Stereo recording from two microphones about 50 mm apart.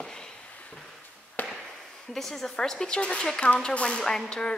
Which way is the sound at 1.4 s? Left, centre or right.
Left.